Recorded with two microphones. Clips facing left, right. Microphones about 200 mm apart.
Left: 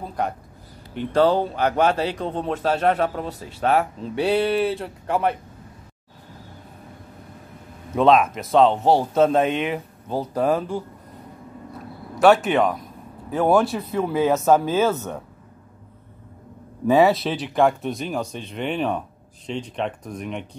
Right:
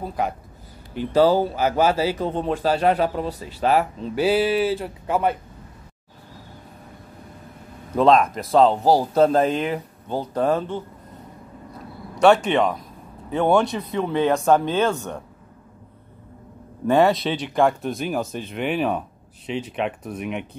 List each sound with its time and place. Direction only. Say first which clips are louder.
0.0 s a man's voice: right 1 dB; 5° right (ahead or behind)
7.9 s speech: even; centre (ahead or behind)
12.4 s speech: even; centre (ahead or behind)
16.8 s speech: left 1 dB; 5° left (ahead or behind)